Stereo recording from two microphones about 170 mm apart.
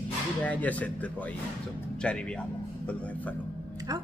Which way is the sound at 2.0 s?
5° left (ahead or behind).